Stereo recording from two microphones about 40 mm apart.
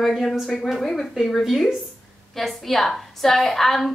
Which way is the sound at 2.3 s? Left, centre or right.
Centre.